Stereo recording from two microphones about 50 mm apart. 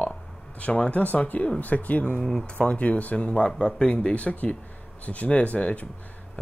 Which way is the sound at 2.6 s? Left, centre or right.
Left.